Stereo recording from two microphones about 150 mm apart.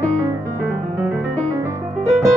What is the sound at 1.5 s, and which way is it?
Music, 20° right (ahead or behind).